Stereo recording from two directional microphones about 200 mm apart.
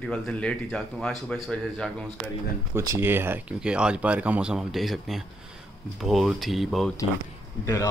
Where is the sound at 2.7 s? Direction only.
15° right (ahead or behind).